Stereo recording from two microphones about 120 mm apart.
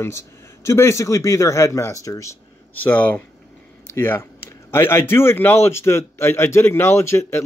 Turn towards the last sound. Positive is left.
turn(degrees=20)  # may be behind; listen again after turning